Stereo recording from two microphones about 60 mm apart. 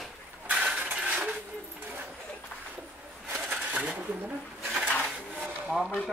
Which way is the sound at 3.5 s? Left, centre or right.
Right.